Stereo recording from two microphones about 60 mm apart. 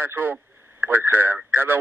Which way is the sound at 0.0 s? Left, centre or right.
Right.